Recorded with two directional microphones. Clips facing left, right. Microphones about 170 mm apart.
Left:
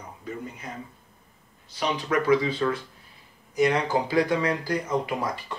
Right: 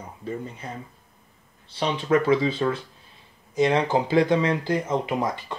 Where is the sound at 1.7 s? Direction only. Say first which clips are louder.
Right 4 dB; 25° right (ahead or behind).